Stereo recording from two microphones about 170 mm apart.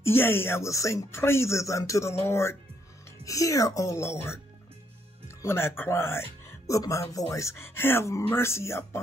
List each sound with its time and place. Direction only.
0.0 s speech: 15° left (ahead or behind)
5.4 s speech: 15° left (ahead or behind)